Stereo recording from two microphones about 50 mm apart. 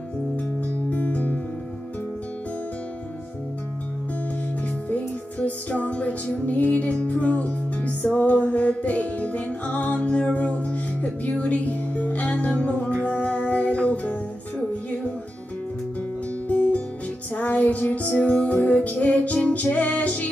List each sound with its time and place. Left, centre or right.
0.7 s music: left
4.8 s music: left
16.4 s music: left